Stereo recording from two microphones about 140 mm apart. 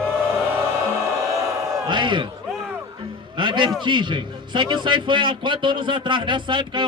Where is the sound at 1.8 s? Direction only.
35° right (ahead or behind).